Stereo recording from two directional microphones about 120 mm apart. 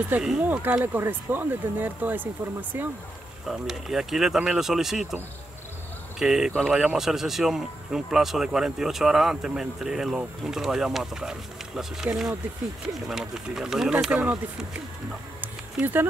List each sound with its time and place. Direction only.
0.0 s speech: 15° right (ahead or behind)
3.4 s a man's voice: 5° right (ahead or behind)
15.4 s a sound: 15° right (ahead or behind)